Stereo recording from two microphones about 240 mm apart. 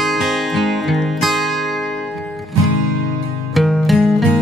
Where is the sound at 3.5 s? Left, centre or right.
Centre.